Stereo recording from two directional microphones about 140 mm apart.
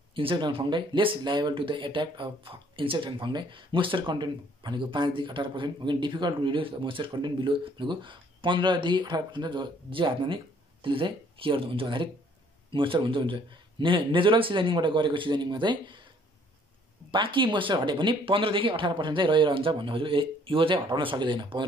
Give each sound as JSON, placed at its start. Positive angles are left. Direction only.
{"t": 0.1, "sound": "speech", "side_deg": -35}
{"t": 17.1, "sound": "speech", "side_deg": -35}